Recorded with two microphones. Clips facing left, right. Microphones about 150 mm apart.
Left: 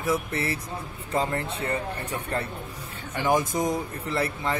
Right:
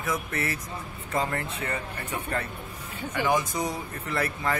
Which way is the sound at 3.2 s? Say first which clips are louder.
Left 3 dB; 45° left (ahead or behind).